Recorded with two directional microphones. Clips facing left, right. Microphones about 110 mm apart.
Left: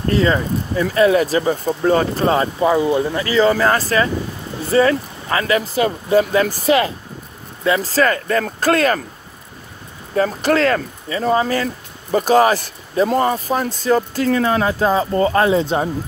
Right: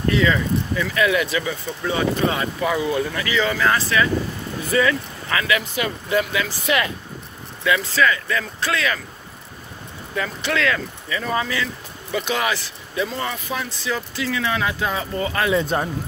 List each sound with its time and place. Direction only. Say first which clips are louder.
0.1 s speech: left 3 dB; 40° left (ahead or behind)
10.1 s speech: left 8 dB; 40° left (ahead or behind)